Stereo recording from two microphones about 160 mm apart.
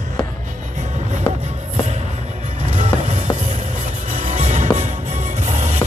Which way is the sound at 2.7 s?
45° right (ahead or behind).